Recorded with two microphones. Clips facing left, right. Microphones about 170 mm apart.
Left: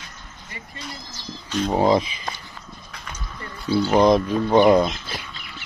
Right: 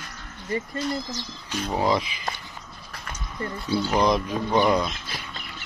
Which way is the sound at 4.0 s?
25° left (ahead or behind).